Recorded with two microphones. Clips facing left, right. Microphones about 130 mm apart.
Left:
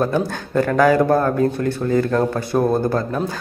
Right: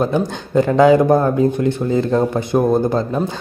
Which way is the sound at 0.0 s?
15° right (ahead or behind).